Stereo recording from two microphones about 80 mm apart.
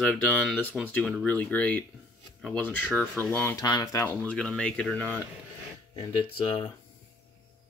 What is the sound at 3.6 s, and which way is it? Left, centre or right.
Speech, left.